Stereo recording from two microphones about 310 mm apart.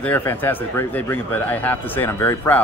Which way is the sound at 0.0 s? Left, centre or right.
Centre.